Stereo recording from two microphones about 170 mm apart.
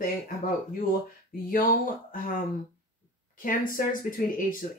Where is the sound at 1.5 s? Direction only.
50° left (ahead or behind).